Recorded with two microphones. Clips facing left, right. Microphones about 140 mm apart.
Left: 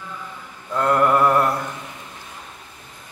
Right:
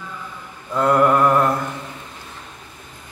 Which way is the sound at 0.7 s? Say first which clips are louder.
Right 2 dB; 5° right (ahead or behind).